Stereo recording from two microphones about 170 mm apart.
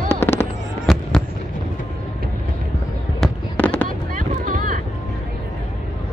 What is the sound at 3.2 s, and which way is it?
Fireworks, 5° left (ahead or behind).